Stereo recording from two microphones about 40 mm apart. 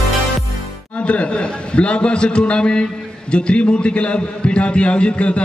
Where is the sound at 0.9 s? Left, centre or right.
Left.